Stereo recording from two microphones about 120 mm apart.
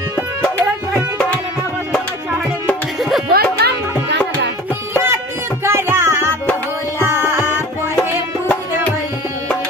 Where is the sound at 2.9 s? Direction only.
Centre (ahead or behind).